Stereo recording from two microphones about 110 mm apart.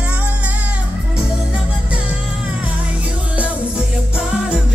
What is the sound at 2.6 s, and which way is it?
Music, 10° right (ahead or behind).